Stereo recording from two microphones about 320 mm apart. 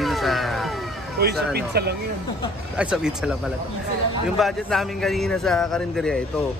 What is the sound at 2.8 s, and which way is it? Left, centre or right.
Speech, centre.